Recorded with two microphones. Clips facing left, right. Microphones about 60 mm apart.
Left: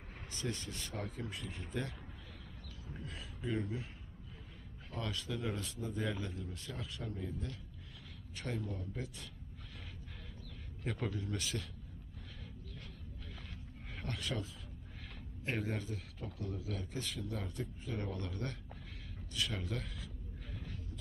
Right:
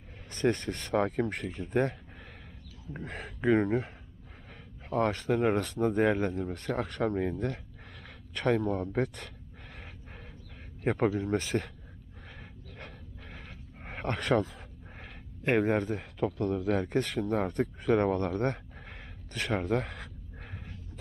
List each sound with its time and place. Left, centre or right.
0.3 s speech: right
1.5 s speech: right
3.0 s speech: right
3.3 s speech: right
4.8 s speech: right
10.8 s speech: right
12.7 s a sound: right
13.8 s speech: right
16.2 s speech: right